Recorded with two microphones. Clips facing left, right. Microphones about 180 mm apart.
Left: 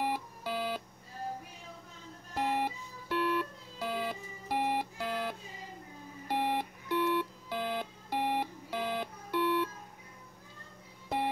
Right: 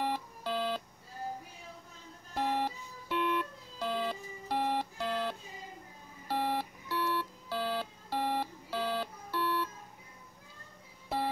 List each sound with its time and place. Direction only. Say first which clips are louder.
0.0 s alarm clock: even; 10° left (ahead or behind)
2.3 s music: even; 10° left (ahead or behind)
6.2 s alarm clock: left 1 dB; 15° left (ahead or behind)